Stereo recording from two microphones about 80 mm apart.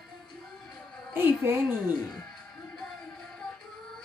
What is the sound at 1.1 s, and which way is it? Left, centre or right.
Speech, right.